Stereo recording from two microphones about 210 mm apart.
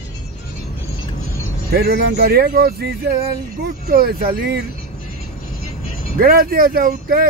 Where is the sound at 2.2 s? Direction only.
45° right (ahead or behind).